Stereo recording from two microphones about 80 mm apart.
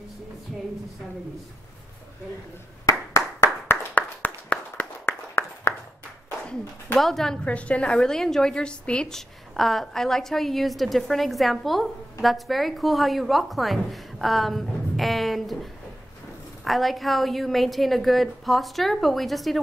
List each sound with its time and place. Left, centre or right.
2.9 s clapping: left
3.6 s clapping: left
5.3 s a sound: left
7.0 s a woman's voice: centre
7.4 s a woman's voice: centre